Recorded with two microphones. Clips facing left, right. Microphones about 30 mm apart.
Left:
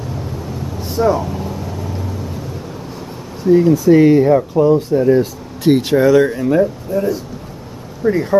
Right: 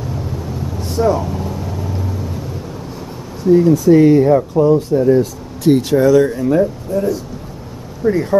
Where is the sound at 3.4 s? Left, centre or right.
Centre.